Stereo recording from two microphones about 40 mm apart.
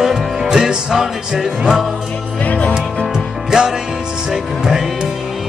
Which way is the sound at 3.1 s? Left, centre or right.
Centre.